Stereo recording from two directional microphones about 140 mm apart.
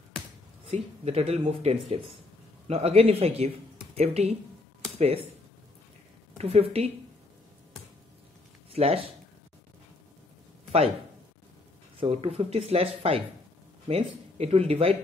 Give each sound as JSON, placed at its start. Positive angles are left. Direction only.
{"t": 0.7, "sound": "speech", "side_deg": -45}
{"t": 6.3, "sound": "a woman's voice", "side_deg": -50}
{"t": 8.7, "sound": "speech", "side_deg": -45}
{"t": 12.0, "sound": "speech", "side_deg": -45}